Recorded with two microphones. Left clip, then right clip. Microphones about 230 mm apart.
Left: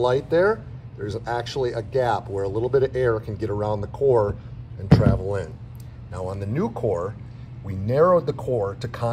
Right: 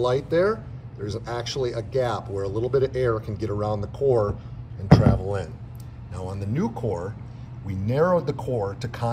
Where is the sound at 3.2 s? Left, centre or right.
Centre.